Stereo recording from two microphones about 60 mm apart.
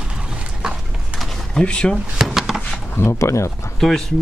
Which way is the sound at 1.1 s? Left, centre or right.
Centre.